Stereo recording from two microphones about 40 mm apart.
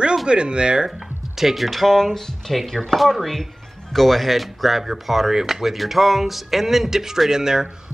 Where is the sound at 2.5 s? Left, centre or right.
Centre.